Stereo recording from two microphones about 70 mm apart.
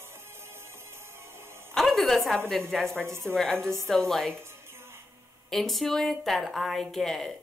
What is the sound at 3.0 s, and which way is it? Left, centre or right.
Speech, right.